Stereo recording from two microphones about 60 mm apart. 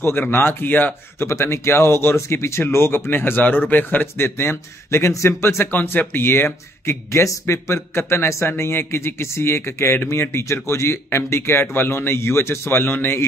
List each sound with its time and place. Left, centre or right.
0.0 s speech: left
1.2 s speech: left
5.8 s speech: left
7.1 s speech: left